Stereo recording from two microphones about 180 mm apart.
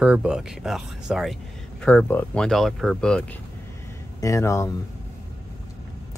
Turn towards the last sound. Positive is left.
turn(degrees=15)  # may be behind; listen again after turning